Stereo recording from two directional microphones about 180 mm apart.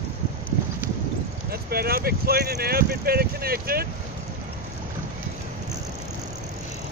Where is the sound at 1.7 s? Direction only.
55° right (ahead or behind).